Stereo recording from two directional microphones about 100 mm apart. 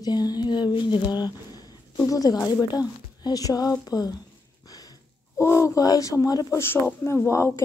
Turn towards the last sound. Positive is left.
turn(degrees=25)  # may be behind; listen again after turning